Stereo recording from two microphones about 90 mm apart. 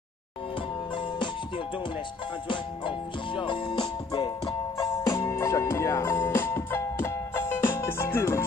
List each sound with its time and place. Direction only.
2.4 s music: 60° left (ahead or behind)
4.7 s music: 40° left (ahead or behind)